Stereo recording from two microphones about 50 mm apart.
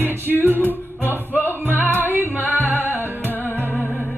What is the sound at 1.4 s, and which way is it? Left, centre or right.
Music, left.